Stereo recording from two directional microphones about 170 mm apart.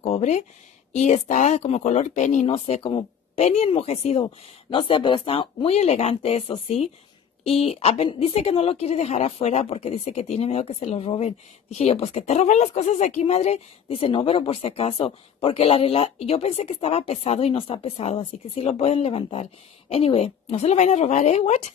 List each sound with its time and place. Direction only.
0.0 s speech: 40° left (ahead or behind)